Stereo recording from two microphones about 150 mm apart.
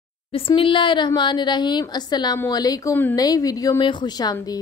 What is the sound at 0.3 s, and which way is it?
A woman's voice, 35° left (ahead or behind).